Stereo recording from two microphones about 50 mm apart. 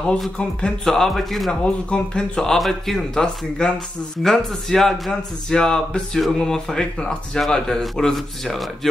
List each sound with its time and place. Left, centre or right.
0.4 s a man's voice: centre
1.5 s speech: centre
2.5 s a man's voice: centre
5.5 s a man's voice: centre